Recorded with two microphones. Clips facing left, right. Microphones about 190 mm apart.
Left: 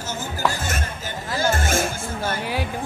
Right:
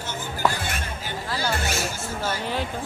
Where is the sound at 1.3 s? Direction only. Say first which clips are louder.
Left 6 dB; 50° left (ahead or behind).